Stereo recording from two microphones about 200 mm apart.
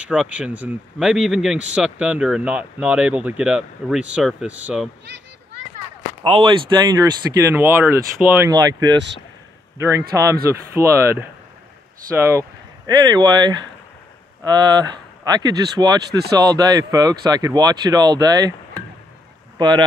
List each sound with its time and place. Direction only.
0.0 s speech: 5° right (ahead or behind)
6.2 s speech: 25° right (ahead or behind)
9.8 s speech: 15° right (ahead or behind)